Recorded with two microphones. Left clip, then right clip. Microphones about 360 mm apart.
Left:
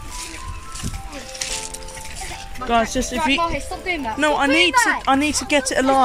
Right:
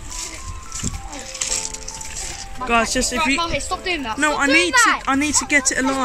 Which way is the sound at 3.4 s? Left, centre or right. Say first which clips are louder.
Even; right.